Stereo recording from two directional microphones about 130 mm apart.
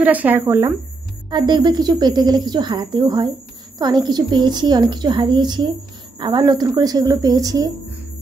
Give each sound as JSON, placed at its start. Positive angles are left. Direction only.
{"t": 0.0, "sound": "speech", "side_deg": -10}
{"t": 1.3, "sound": "a woman's voice", "side_deg": -35}